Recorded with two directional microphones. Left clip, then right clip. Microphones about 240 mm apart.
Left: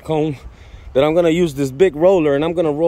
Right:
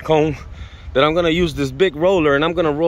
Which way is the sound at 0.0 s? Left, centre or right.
Centre.